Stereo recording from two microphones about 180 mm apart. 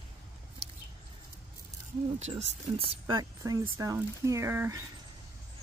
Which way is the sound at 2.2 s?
40° right (ahead or behind).